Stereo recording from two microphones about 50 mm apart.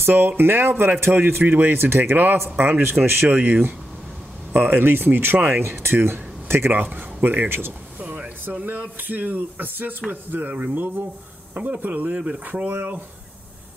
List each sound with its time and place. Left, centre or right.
0.0 s speech: right
3.3 s speech: right
6.4 s a sound: right
6.7 s speech: right
7.4 s speech: right
8.0 s a sound: right
8.6 s speech: right